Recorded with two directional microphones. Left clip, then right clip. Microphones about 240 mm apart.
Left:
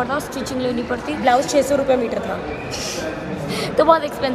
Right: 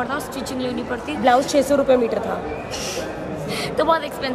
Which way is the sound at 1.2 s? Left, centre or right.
Right.